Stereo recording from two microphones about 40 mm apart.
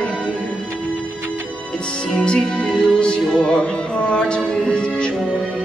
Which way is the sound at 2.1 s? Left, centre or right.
Left.